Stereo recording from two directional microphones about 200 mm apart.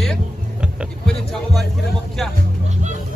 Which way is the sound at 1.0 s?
Centre (ahead or behind).